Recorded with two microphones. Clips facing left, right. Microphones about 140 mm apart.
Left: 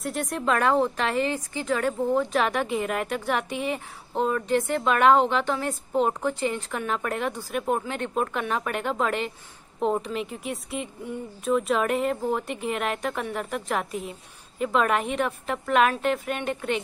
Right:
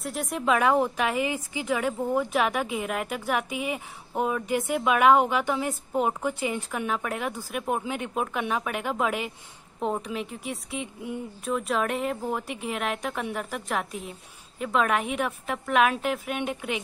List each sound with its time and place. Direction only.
0.0 s a woman's voice: centre (ahead or behind)